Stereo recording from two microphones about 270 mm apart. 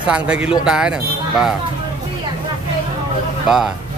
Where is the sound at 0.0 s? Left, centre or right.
Centre.